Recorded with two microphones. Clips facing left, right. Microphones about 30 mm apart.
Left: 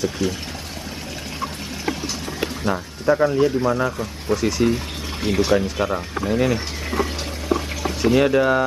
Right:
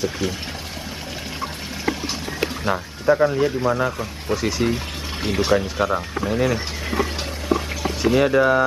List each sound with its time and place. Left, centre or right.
0.2 s speech: centre
2.6 s speech: centre
8.0 s speech: centre